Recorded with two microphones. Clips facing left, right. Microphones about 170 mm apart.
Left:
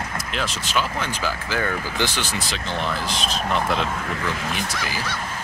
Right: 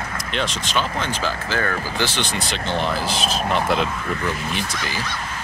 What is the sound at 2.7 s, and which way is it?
Speech, 30° right (ahead or behind).